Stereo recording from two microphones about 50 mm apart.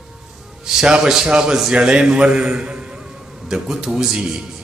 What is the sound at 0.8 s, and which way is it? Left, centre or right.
A man's voice, centre.